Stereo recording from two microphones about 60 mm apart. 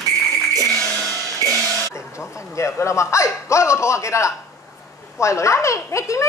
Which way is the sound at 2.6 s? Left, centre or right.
Left.